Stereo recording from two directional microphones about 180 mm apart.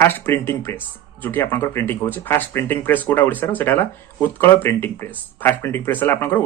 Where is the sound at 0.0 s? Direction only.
10° left (ahead or behind).